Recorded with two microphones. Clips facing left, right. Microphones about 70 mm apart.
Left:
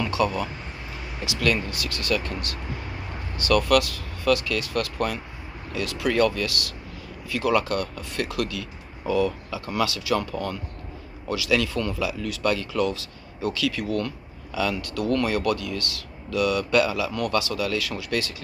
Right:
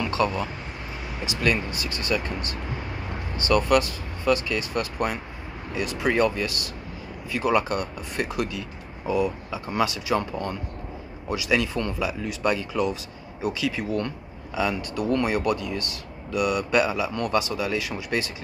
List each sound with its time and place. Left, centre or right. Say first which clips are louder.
0.1 s speech: even; right